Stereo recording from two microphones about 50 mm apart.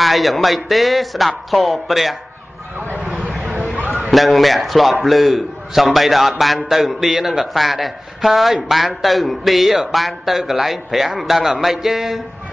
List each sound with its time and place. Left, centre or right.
0.0 s a man's voice: centre
3.0 s a sound: right
4.1 s a man's voice: centre